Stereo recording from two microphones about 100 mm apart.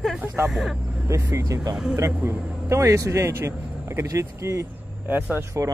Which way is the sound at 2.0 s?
25° right (ahead or behind).